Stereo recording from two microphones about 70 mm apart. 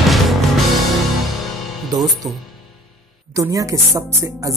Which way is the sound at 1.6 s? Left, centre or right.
Centre.